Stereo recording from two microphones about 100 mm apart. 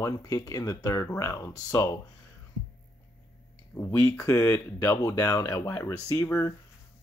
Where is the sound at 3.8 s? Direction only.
25° left (ahead or behind).